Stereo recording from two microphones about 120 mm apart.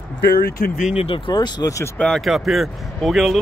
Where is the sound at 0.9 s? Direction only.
55° left (ahead or behind).